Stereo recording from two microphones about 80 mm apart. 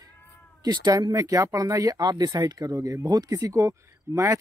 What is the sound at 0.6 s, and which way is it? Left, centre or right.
Speech, right.